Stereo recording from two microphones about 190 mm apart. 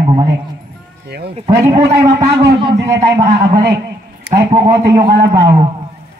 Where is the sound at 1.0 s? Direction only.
60° right (ahead or behind).